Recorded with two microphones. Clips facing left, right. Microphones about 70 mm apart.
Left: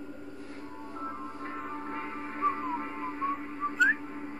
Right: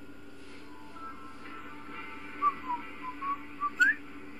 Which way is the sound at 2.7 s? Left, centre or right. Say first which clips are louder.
Left 3 dB; left.